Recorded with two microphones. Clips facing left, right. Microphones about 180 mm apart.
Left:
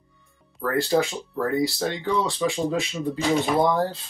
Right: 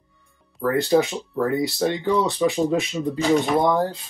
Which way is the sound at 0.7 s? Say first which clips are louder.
Right 3 dB; 20° right (ahead or behind).